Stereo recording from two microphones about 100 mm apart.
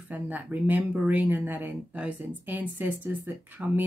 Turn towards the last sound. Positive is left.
turn(degrees=-20)  # may be behind; listen again after turning